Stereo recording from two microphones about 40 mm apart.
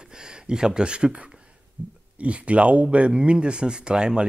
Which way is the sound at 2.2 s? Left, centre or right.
Right.